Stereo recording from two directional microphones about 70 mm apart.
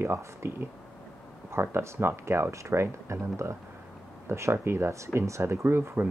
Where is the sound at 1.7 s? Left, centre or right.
Right.